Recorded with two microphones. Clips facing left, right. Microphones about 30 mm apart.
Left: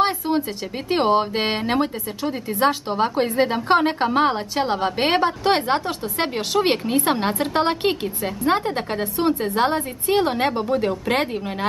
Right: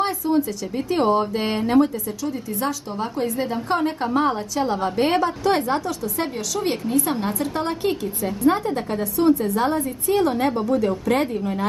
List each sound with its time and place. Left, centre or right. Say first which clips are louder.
0.0 s speech: left 1 dB; left